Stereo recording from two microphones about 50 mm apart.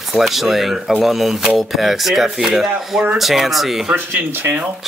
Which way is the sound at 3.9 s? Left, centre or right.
Right.